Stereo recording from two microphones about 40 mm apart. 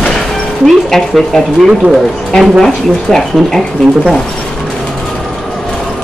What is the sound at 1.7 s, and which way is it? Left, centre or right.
Speech, centre.